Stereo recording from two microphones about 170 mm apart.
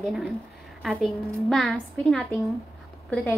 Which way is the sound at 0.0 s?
Centre (ahead or behind).